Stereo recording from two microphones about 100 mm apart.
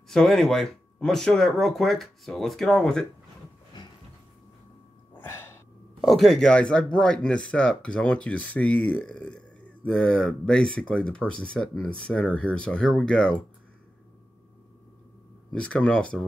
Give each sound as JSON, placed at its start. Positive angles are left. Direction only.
{"t": 0.1, "sound": "speech", "side_deg": 5}
{"t": 5.1, "sound": "a sound", "side_deg": 20}
{"t": 5.9, "sound": "speech", "side_deg": 0}
{"t": 15.5, "sound": "speech", "side_deg": 10}